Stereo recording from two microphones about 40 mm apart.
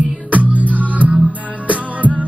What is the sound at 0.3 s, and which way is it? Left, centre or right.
Music, right.